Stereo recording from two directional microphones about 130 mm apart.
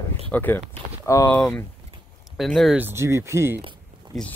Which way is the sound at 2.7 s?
20° right (ahead or behind).